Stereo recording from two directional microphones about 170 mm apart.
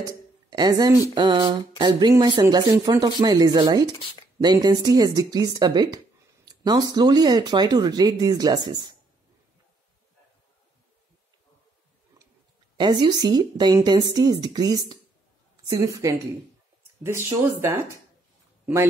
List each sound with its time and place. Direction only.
0.5 s speech: 25° right (ahead or behind)
12.7 s speech: 25° right (ahead or behind)